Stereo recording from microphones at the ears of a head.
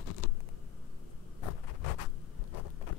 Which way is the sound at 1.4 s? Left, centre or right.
Left.